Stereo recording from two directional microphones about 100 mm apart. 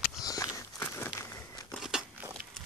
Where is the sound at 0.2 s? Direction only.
40° left (ahead or behind).